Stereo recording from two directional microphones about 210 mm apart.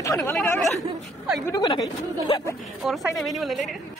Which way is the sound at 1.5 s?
15° left (ahead or behind).